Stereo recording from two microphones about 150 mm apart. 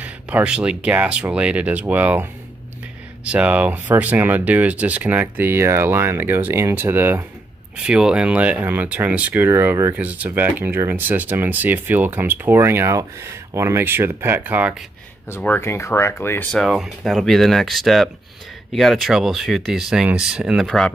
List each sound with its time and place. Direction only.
0.0 s speech: 10° right (ahead or behind)
3.3 s speech: 10° right (ahead or behind)
15.2 s speech: 15° left (ahead or behind)
16.5 s speech: centre (ahead or behind)